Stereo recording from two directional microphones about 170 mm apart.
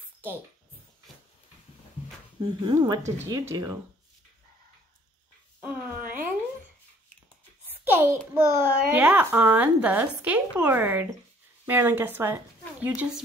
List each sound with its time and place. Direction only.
2.6 s speech: 25° right (ahead or behind)
5.6 s a sound: 10° right (ahead or behind)
7.8 s a child's voice: 15° right (ahead or behind)